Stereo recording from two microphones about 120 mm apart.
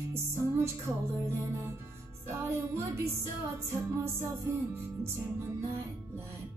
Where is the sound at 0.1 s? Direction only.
20° right (ahead or behind).